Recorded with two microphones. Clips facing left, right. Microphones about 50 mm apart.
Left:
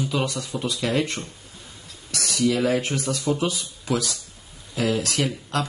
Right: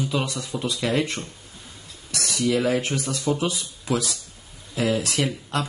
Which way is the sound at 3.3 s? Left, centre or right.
Centre.